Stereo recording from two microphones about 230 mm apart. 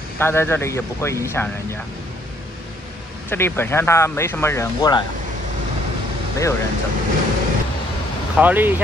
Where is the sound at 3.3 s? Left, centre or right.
Centre.